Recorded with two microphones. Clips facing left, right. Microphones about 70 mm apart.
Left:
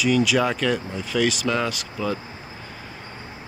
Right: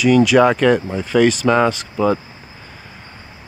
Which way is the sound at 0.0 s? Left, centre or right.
Right.